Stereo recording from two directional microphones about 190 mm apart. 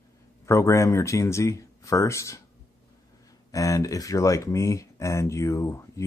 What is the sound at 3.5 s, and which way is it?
Speech, 15° left (ahead or behind).